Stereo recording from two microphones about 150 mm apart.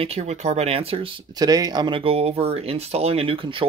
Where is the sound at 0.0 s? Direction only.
45° right (ahead or behind).